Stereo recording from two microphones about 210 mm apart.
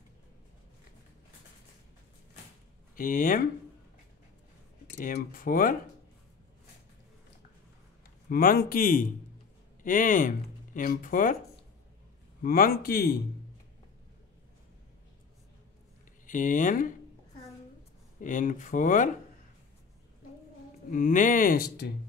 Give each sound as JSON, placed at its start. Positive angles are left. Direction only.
{"t": 3.0, "sound": "speech", "side_deg": 40}
{"t": 4.9, "sound": "speech", "side_deg": 40}
{"t": 8.3, "sound": "speech", "side_deg": 45}
{"t": 12.4, "sound": "speech", "side_deg": 45}
{"t": 16.3, "sound": "speech", "side_deg": 40}
{"t": 18.2, "sound": "speech", "side_deg": 40}
{"t": 20.9, "sound": "speech", "side_deg": 40}